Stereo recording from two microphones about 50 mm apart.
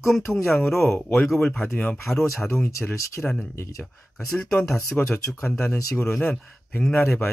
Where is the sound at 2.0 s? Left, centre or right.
Centre.